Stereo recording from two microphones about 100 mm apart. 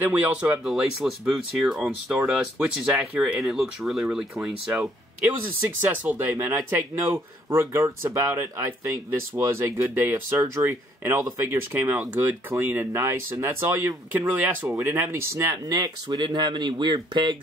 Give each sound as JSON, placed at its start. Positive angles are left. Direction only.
{"t": 0.0, "sound": "speech", "side_deg": -15}
{"t": 0.7, "sound": "speech", "side_deg": -5}
{"t": 5.9, "sound": "speech", "side_deg": -20}
{"t": 6.5, "sound": "speech", "side_deg": -30}
{"t": 14.3, "sound": "speech", "side_deg": -15}
{"t": 15.7, "sound": "speech", "side_deg": -45}